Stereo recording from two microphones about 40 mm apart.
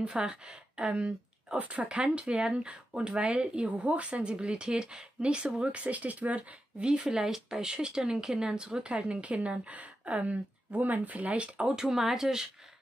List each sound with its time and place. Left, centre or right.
0.1 s speech: right
1.6 s a woman's voice: right
1.9 s speech: right
6.8 s a woman's voice: right
11.7 s speech: centre